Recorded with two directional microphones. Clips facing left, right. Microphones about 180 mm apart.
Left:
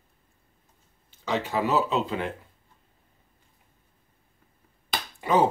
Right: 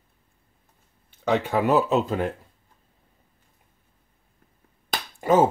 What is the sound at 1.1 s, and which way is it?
Speech, 55° right (ahead or behind).